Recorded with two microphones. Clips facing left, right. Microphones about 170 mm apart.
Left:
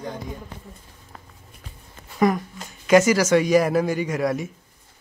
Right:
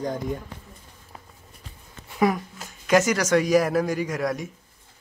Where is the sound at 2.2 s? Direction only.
5° right (ahead or behind).